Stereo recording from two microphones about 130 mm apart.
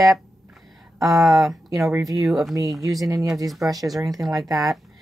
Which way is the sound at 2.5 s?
25° right (ahead or behind).